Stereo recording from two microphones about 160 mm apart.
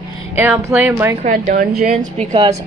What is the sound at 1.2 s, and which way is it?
Speech, 55° right (ahead or behind).